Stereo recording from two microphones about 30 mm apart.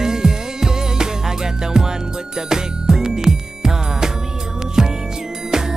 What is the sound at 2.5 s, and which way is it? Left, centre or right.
Music, right.